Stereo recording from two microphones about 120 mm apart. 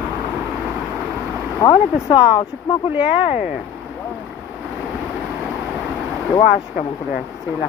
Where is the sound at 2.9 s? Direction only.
15° right (ahead or behind).